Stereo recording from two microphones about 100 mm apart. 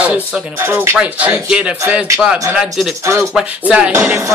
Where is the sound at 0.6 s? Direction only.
20° right (ahead or behind); by 2.9 s 5° right (ahead or behind).